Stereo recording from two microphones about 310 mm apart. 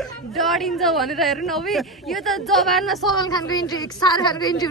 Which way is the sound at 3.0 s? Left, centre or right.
Centre.